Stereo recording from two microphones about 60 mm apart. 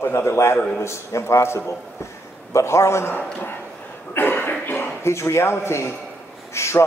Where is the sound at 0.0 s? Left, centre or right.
Left.